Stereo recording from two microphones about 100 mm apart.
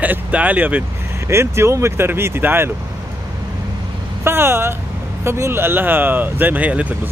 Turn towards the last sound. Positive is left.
turn(degrees=-15)  # may be behind; listen again after turning